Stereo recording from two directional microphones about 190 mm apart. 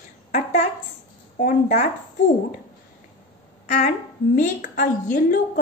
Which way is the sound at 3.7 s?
40° left (ahead or behind).